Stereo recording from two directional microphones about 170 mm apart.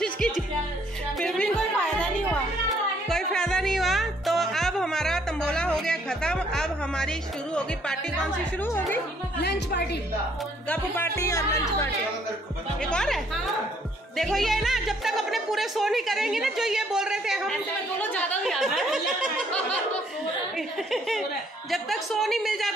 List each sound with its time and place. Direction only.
1.2 s music: 5° left (ahead or behind)
3.1 s music: centre (ahead or behind)
8.6 s speech: 10° left (ahead or behind)
9.4 s a woman's voice: 75° left (ahead or behind)
10.7 s speech: 15° left (ahead or behind)
12.8 s speech: 5° left (ahead or behind)
18.0 s speech: 10° left (ahead or behind)